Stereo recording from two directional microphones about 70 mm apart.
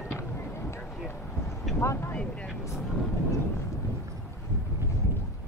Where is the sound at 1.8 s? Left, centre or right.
Left.